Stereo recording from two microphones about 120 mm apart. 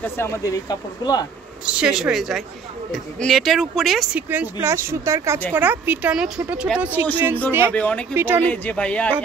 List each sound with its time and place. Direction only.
0.0 s speech: 20° left (ahead or behind)
1.7 s speech: 5° right (ahead or behind)
4.3 s speech: 20° right (ahead or behind)
7.7 s speech: 10° left (ahead or behind)
8.1 s speech: 20° right (ahead or behind)
8.5 s speech: 10° left (ahead or behind)